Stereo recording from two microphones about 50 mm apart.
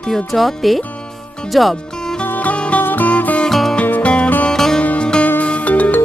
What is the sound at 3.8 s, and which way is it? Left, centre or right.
Music, left.